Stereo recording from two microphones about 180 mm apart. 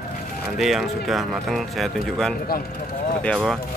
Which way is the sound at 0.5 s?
Centre (ahead or behind).